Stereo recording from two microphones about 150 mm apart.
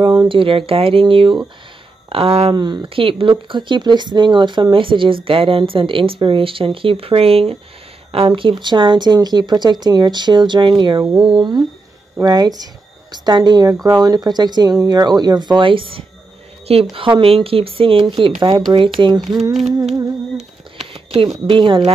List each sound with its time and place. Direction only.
0.0 s speech: 30° right (ahead or behind)
2.5 s speech: 30° right (ahead or behind)
20.9 s speech: 40° right (ahead or behind)